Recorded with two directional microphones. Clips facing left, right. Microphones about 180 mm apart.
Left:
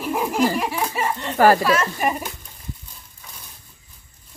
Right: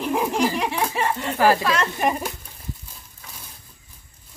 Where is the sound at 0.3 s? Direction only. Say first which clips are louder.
Left 2 dB; 5° left (ahead or behind).